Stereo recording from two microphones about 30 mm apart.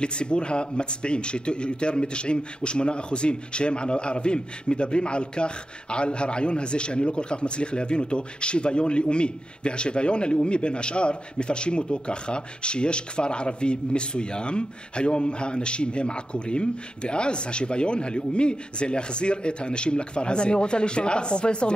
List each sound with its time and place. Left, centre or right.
0.0 s speech: left